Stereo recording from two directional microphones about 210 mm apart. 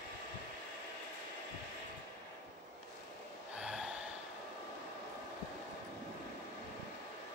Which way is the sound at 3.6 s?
5° right (ahead or behind).